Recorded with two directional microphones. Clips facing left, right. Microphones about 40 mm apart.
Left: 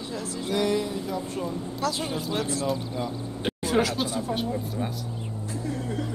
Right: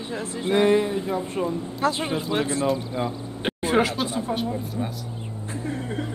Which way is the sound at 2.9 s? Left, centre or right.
Right.